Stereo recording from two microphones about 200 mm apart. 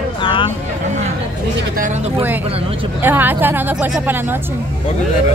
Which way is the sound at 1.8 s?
35° right (ahead or behind).